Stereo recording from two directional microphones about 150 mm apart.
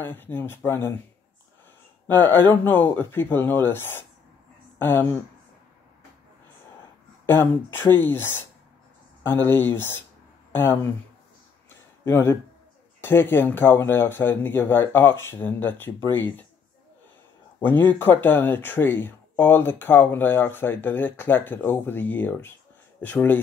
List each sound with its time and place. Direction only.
0.0 s speech: 15° left (ahead or behind)
2.0 s speech: 10° left (ahead or behind)
7.2 s speech: 15° left (ahead or behind)
11.7 s a sound: 15° left (ahead or behind)
13.0 s speech: 15° left (ahead or behind)
17.6 s speech: 15° left (ahead or behind)